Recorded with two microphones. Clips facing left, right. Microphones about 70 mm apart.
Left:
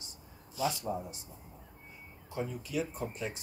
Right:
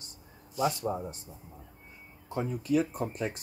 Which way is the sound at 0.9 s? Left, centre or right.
Right.